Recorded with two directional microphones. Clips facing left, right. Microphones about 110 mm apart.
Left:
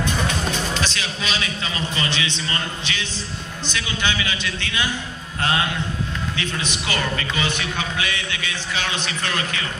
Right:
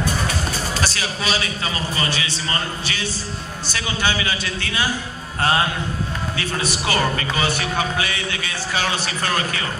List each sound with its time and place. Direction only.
0.7 s a man's voice: 40° right (ahead or behind)
2.4 s music: 40° right (ahead or behind)